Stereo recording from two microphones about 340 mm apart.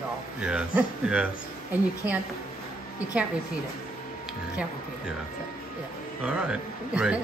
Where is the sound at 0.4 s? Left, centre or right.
Centre.